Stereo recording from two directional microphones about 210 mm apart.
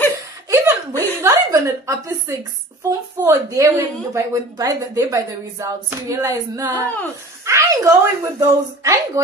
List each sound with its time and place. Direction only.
0.5 s chuckle: 10° right (ahead or behind)
1.2 s a sound: 15° right (ahead or behind)
2.9 s a woman's voice: 15° right (ahead or behind)